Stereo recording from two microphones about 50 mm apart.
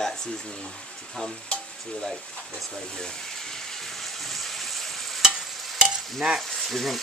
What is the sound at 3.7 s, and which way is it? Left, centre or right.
Stir, centre.